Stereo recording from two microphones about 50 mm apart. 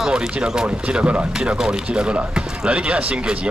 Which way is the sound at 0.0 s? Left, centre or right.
Centre.